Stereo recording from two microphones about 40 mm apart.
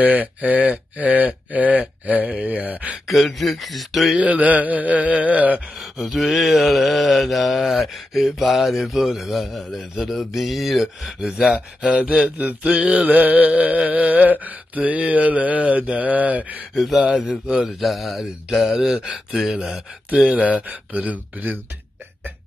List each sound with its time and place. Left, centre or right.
0.0 s music: right
3.1 s mantra: centre
4.2 s music: right
5.8 s mantra: centre
11.1 s a sound: centre
11.5 s speech: right
12.4 s music: right
16.7 s mantra: centre
17.1 s a sound: centre
17.6 s mantra: centre
18.7 s a sound: centre
20.1 s music: right